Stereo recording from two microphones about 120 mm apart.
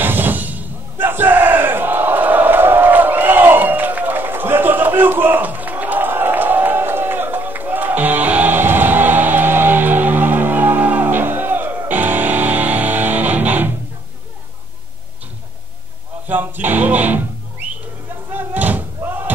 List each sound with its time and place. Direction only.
0.0 s battle cry: 15° right (ahead or behind)
11.9 s music: 15° right (ahead or behind)
16.3 s music: 15° right (ahead or behind)
18.3 s slam: 15° right (ahead or behind)